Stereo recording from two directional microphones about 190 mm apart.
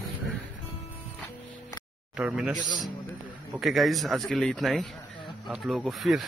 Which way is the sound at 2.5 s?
20° left (ahead or behind).